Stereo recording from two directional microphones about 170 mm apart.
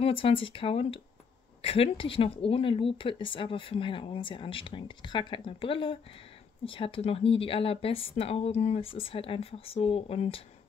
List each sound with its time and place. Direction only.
0.0 s speech: 35° left (ahead or behind)